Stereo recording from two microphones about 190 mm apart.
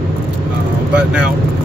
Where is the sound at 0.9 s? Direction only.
5° right (ahead or behind).